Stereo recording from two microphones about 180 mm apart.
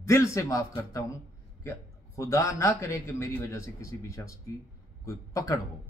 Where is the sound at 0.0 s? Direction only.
15° left (ahead or behind).